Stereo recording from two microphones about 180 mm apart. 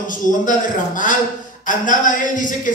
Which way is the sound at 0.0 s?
45° left (ahead or behind).